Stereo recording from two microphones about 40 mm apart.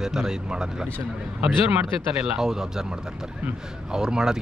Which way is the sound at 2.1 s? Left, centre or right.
Centre.